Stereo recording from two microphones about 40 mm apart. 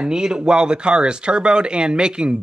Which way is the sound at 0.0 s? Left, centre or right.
Centre.